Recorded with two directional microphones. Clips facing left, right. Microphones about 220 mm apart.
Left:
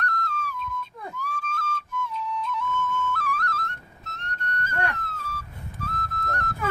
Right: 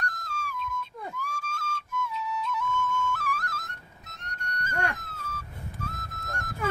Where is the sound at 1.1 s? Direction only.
10° right (ahead or behind).